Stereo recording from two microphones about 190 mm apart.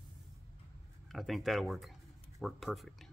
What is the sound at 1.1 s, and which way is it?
Speech, centre (ahead or behind).